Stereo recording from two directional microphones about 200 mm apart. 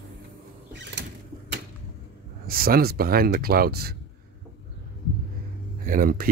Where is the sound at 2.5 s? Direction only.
50° right (ahead or behind).